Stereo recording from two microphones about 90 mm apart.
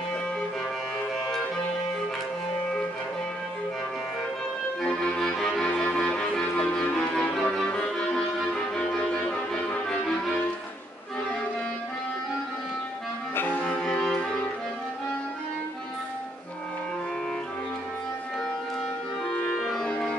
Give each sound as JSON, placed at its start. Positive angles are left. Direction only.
{"t": 4.8, "sound": "music", "side_deg": 10}
{"t": 13.4, "sound": "music", "side_deg": 20}
{"t": 13.8, "sound": "music", "side_deg": 5}
{"t": 19.2, "sound": "music", "side_deg": 10}